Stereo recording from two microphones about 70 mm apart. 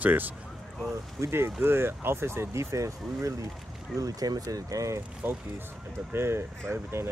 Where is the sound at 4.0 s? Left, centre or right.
Right.